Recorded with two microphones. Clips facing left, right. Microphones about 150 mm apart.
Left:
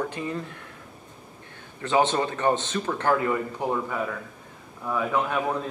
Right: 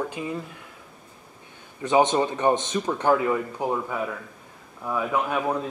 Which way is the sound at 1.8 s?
15° right (ahead or behind).